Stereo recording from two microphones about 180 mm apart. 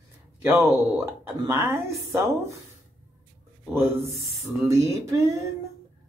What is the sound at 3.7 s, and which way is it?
Speech, 15° right (ahead or behind).